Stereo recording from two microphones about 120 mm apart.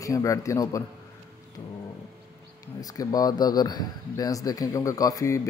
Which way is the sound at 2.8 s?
30° left (ahead or behind).